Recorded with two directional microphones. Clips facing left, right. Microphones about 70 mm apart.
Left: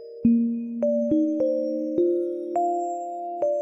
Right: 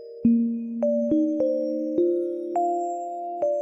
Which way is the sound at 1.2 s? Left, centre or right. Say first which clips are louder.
Even; centre.